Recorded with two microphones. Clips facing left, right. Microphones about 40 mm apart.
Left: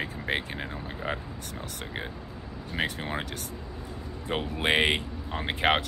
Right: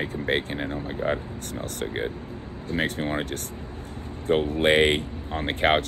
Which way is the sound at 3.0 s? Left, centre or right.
Centre.